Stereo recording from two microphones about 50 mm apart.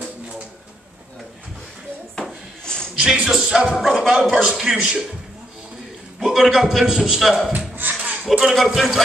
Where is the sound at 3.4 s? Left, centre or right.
Centre.